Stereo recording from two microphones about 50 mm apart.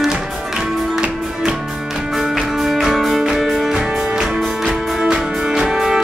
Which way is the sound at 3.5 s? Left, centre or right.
Centre.